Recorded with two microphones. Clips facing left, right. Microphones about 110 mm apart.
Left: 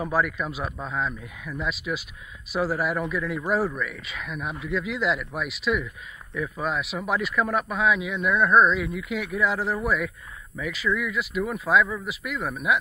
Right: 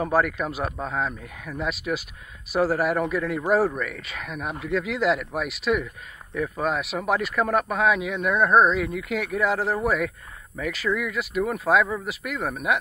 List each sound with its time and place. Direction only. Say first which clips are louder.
0.1 s speech: right 3 dB; 60° right (ahead or behind)